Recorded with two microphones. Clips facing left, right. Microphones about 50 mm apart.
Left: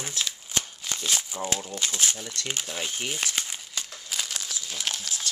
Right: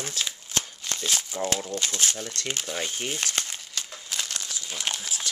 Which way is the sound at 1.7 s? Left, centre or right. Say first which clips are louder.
Right 1 dB; centre.